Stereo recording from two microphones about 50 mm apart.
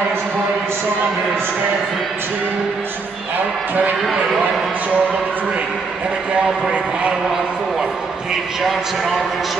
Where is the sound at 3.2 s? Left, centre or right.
Right.